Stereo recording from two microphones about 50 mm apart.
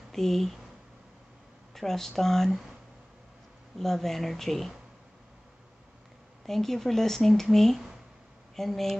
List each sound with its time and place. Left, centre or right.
0.1 s speech: centre
1.7 s speech: centre
3.7 s speech: centre
6.4 s speech: centre